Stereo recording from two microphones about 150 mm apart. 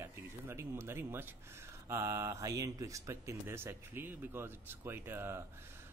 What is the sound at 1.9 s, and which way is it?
Speech, 20° right (ahead or behind).